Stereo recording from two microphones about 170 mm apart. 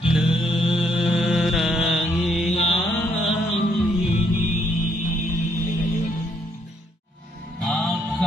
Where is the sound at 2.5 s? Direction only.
40° left (ahead or behind).